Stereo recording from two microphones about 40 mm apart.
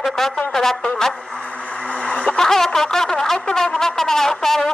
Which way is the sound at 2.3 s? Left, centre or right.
Centre.